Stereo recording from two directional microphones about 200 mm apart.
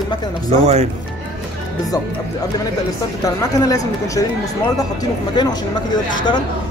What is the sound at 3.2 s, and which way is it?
Speech, 15° left (ahead or behind).